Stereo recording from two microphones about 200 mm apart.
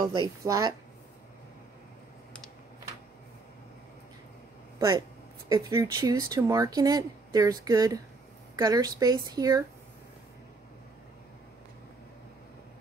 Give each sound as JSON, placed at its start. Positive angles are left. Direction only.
{"t": 0.0, "sound": "speech", "side_deg": -20}
{"t": 5.5, "sound": "a woman's voice", "side_deg": -20}